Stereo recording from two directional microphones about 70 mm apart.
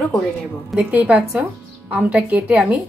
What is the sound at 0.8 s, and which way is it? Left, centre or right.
A woman's voice, centre.